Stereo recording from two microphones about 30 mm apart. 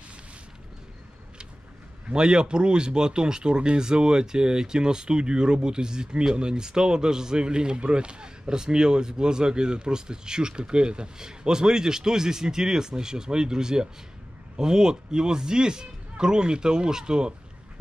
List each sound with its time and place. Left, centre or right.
2.1 s speech: right